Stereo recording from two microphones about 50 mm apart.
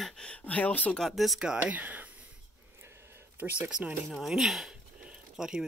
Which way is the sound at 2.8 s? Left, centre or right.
Right.